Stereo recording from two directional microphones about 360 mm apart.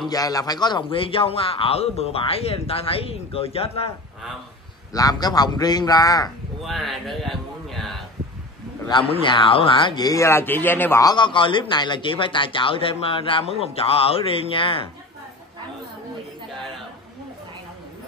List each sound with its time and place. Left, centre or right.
0.1 s a man's voice: centre
4.9 s a man's voice: centre
6.6 s speech: centre
8.8 s a man's voice: centre